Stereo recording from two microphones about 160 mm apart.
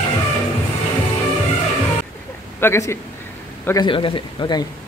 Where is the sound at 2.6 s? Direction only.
15° left (ahead or behind).